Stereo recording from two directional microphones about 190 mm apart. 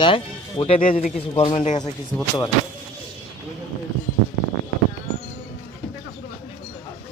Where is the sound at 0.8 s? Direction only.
45° left (ahead or behind).